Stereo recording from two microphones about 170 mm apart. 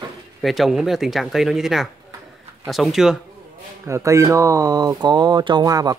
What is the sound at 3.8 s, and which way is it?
Speech, 15° right (ahead or behind).